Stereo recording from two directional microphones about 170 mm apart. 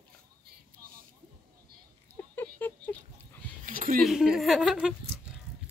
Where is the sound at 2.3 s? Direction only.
10° left (ahead or behind).